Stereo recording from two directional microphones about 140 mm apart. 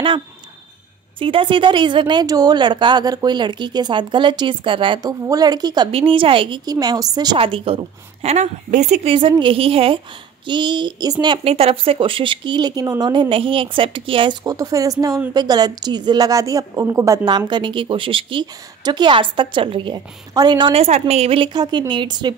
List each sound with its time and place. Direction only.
1.2 s a woman's voice: 40° right (ahead or behind)
5.9 s a woman's voice: 40° right (ahead or behind)
7.3 s a woman's voice: 40° right (ahead or behind); by 9.1 s 55° right (ahead or behind)
9.4 s a woman's voice: 40° right (ahead or behind)
11.4 s a woman's voice: 45° right (ahead or behind)
14.4 s a woman's voice: 25° right (ahead or behind)